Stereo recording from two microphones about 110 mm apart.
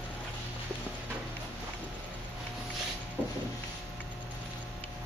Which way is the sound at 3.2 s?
15° left (ahead or behind).